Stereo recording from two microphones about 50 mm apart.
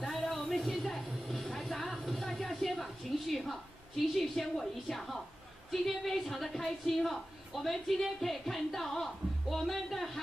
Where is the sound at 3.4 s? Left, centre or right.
Centre.